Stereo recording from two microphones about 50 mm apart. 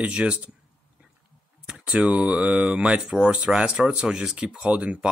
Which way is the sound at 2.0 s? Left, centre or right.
Right.